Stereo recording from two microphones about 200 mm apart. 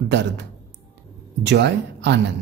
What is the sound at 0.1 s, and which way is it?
Speech, 65° right (ahead or behind).